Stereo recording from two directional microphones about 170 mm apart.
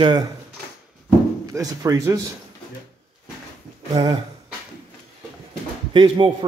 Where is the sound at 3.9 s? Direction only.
25° right (ahead or behind).